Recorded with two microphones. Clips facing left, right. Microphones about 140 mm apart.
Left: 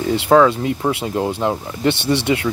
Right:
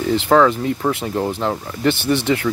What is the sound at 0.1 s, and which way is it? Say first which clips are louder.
Speech: left 1 dB; 20° left (ahead or behind).